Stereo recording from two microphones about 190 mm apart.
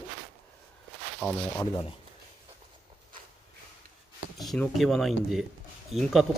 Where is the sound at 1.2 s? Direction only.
10° right (ahead or behind).